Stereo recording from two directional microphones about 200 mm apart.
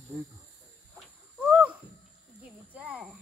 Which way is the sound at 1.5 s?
5° right (ahead or behind).